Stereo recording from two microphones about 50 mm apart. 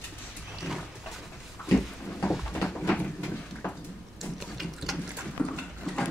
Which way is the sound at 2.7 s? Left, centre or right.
Centre.